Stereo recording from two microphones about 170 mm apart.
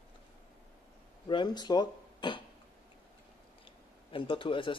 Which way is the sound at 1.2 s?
25° left (ahead or behind).